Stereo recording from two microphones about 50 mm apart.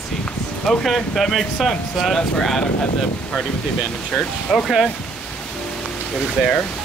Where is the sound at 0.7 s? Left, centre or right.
Centre.